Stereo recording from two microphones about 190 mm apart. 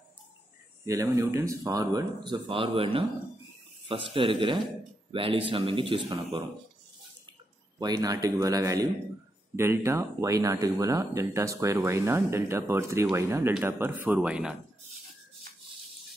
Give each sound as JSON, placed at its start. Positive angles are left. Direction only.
{"t": 0.8, "sound": "speech", "side_deg": -15}
{"t": 4.1, "sound": "speech", "side_deg": -25}
{"t": 7.8, "sound": "speech", "side_deg": -20}